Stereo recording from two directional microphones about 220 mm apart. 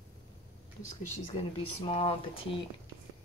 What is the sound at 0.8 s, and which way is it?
Speech, 30° left (ahead or behind).